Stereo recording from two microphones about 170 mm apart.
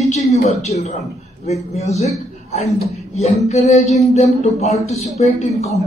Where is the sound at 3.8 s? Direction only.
Centre (ahead or behind).